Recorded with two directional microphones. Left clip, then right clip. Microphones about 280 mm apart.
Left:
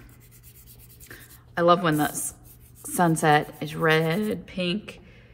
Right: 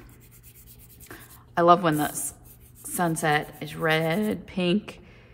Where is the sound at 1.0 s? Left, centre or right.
Centre.